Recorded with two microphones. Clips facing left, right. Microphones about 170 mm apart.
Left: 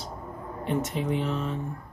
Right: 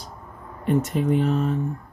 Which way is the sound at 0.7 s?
50° right (ahead or behind).